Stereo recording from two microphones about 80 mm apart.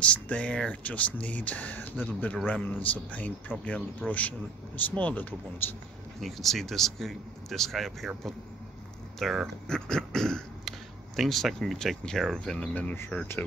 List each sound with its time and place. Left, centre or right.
0.0 s speech: centre
6.2 s speech: centre
9.2 s speech: centre
9.7 s a sound: centre
11.1 s speech: centre